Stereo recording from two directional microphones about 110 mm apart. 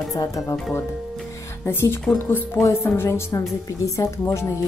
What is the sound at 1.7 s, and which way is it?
A woman's voice, 20° left (ahead or behind).